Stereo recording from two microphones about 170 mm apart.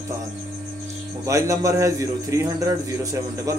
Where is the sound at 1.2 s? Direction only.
20° right (ahead or behind).